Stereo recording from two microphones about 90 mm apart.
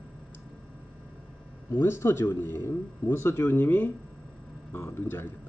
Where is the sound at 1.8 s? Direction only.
30° left (ahead or behind).